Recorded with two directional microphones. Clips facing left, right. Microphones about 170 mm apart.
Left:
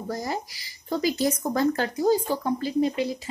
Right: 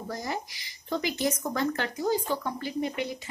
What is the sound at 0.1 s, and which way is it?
Speech, 35° left (ahead or behind).